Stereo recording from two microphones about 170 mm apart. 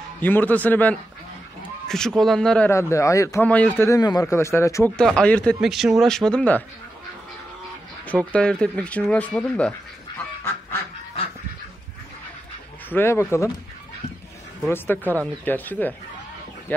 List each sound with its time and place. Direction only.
0.2 s a man's voice: 10° left (ahead or behind)
2.7 s a man's voice: 15° left (ahead or behind)
4.9 s speech: 5° left (ahead or behind)
8.1 s speech: 5° left (ahead or behind)
12.9 s a man's voice: 15° left (ahead or behind)
14.7 s a man's voice: 10° left (ahead or behind)